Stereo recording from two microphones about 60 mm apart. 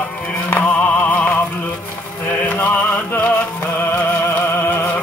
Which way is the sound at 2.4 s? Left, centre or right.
Left.